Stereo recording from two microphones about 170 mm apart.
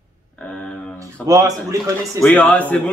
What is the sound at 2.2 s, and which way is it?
Speech, 10° left (ahead or behind).